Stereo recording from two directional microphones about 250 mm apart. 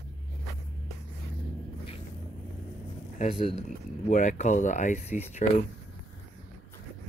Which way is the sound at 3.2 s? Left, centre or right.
Left.